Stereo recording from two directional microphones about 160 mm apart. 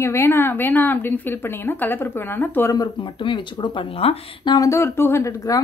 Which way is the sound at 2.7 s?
30° left (ahead or behind).